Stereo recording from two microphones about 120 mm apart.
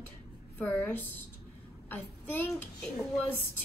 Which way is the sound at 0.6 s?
15° left (ahead or behind).